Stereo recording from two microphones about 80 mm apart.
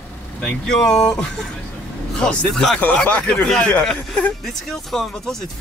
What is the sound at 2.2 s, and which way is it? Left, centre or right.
Speech, centre.